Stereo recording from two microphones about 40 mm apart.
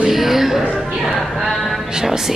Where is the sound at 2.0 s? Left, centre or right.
Centre.